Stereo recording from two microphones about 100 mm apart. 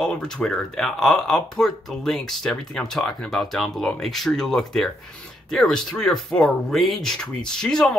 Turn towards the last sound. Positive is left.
turn(degrees=5)  # may be behind; listen again after turning